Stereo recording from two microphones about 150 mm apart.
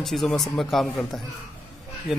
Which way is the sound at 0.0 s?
Centre (ahead or behind).